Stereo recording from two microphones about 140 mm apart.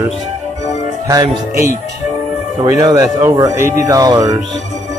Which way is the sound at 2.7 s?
25° right (ahead or behind).